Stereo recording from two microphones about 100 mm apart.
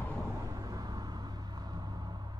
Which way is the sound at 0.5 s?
40° right (ahead or behind).